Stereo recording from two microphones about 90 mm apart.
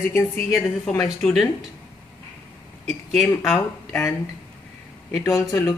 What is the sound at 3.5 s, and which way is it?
Speech, 20° left (ahead or behind).